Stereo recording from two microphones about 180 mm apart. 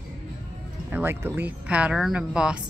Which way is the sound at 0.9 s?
10° right (ahead or behind).